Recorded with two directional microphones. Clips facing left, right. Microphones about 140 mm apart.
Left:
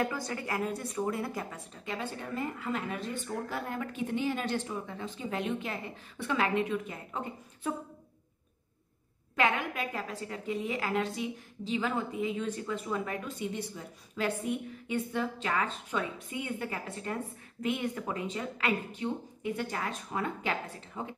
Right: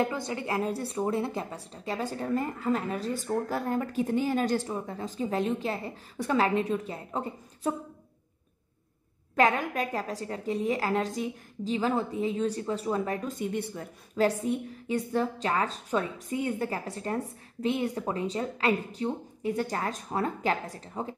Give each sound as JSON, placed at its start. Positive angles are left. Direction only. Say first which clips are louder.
{"t": 0.0, "sound": "a woman's voice", "louder": "right 3 dB", "side_deg": -20}
{"t": 9.3, "sound": "a woman's voice", "louder": "right 5 dB", "side_deg": -40}
{"t": 14.1, "sound": "a woman's voice", "louder": "right 6 dB", "side_deg": -35}